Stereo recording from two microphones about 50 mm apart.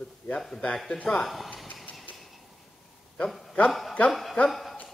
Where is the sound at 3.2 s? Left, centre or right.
Centre.